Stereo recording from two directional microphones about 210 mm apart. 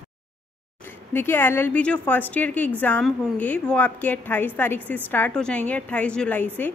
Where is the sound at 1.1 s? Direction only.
10° left (ahead or behind).